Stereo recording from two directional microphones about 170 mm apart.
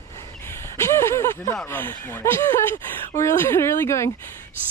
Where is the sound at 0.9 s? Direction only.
15° left (ahead or behind).